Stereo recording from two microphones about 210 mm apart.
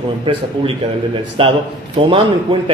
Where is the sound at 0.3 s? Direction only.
25° right (ahead or behind).